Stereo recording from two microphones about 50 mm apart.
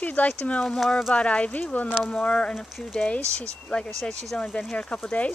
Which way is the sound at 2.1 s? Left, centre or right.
Left.